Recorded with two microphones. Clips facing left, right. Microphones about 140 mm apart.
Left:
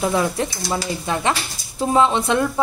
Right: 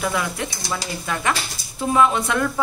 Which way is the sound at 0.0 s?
30° left (ahead or behind).